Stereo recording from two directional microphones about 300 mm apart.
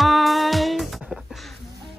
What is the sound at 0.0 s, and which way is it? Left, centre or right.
Music, centre.